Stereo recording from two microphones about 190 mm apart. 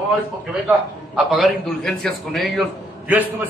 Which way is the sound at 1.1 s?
Centre (ahead or behind).